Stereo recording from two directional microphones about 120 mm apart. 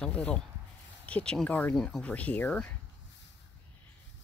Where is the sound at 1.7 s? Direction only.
5° left (ahead or behind).